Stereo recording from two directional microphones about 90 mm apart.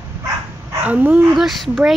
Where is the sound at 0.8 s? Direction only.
15° right (ahead or behind).